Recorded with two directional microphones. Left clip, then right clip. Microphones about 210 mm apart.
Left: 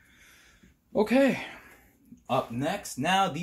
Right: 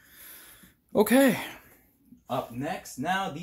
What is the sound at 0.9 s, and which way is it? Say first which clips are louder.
Speech: right 2 dB; 35° right (ahead or behind).